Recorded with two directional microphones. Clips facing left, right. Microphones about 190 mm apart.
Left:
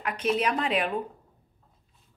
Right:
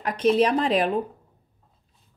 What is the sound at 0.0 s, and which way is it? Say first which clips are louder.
Speech: right 7 dB; 35° right (ahead or behind).